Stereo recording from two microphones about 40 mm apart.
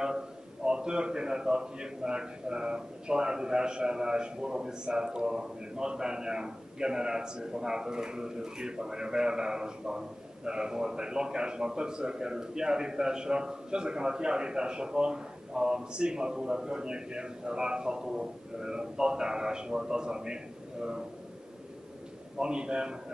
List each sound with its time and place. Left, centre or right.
0.7 s a man's voice: right
22.4 s a man's voice: right